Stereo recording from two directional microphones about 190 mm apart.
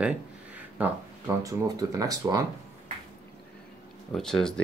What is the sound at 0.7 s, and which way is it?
Speech, 10° right (ahead or behind).